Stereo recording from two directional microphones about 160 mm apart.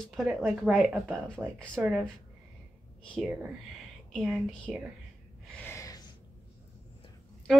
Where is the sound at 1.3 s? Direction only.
5° left (ahead or behind).